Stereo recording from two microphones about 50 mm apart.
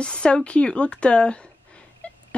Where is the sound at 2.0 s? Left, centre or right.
Left.